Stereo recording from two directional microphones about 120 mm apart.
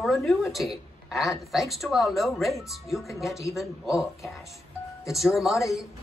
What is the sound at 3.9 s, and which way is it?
Speech, 25° left (ahead or behind).